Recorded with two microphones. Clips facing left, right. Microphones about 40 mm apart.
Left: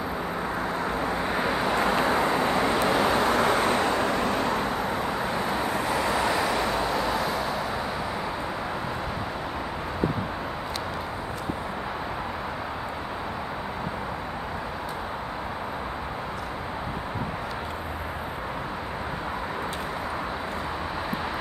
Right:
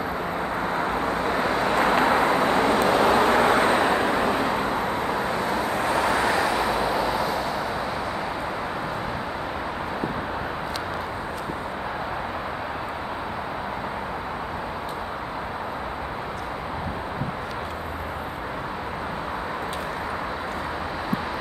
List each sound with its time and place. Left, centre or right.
1.4 s vehicle: centre
1.8 s vehicle: right
5.3 s vehicle: centre
5.8 s vehicle: centre